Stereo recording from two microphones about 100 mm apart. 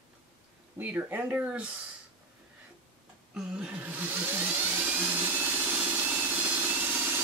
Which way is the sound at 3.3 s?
10° right (ahead or behind).